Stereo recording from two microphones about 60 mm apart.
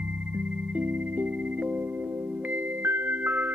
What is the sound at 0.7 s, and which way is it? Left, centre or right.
Music, right.